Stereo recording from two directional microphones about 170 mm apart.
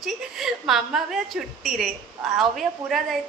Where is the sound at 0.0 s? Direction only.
Centre (ahead or behind).